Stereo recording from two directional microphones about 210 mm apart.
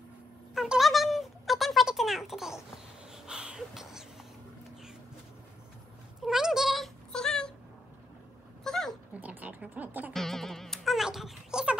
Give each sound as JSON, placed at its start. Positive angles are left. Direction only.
{"t": 0.6, "sound": "a sound", "side_deg": 0}
{"t": 3.1, "sound": "wheeze", "side_deg": -5}
{"t": 6.2, "sound": "cat", "side_deg": 0}
{"t": 8.6, "sound": "dog", "side_deg": 0}
{"t": 9.3, "sound": "music", "side_deg": -5}